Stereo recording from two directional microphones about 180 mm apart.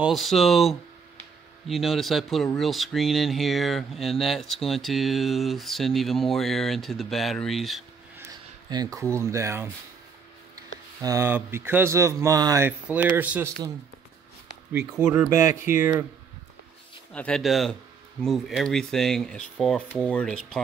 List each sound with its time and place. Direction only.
0.0 s speech: centre (ahead or behind)
8.6 s speech: 25° right (ahead or behind)
11.0 s speech: 15° right (ahead or behind)
14.7 s speech: 10° right (ahead or behind)
17.1 s speech: 5° left (ahead or behind)